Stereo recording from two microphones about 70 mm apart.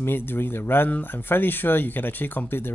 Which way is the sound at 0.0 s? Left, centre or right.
Left.